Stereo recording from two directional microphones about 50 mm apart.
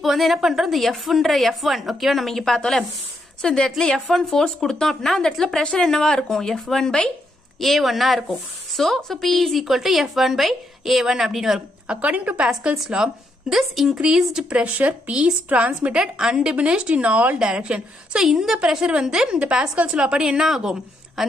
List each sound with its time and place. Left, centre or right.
0.0 s a woman's voice: centre
7.6 s a woman's voice: centre
12.0 s speech: right
12.7 s speech: centre
14.6 s speech: right
16.0 s speech: centre; by 17.4 s right
17.4 s speech: centre
18.2 s a woman's voice: centre